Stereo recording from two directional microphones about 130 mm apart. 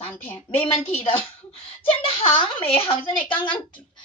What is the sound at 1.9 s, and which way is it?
A woman's voice, 50° left (ahead or behind).